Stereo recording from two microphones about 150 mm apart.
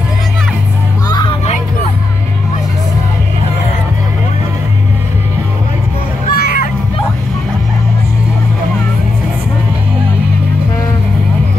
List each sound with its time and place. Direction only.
1.0 s music: 25° left (ahead or behind)
6.3 s music: 80° left